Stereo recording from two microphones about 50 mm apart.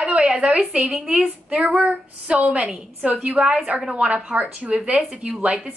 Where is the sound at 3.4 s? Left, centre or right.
Centre.